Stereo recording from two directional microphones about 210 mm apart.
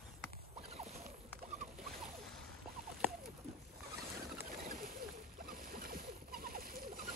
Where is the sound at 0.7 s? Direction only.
30° right (ahead or behind).